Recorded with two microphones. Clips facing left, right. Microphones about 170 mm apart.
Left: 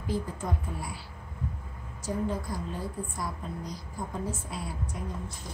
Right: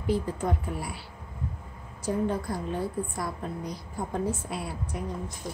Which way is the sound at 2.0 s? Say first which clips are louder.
Right 3 dB; 60° right (ahead or behind).